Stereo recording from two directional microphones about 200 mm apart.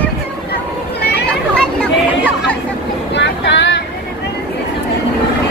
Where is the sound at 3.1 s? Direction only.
60° left (ahead or behind).